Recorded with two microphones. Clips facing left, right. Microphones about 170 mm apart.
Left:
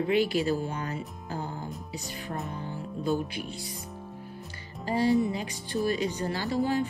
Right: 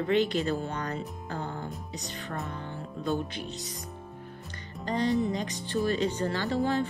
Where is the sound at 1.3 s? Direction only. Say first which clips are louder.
Even; 65° right (ahead or behind).